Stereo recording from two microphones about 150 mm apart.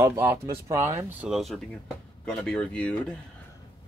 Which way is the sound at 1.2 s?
Centre (ahead or behind).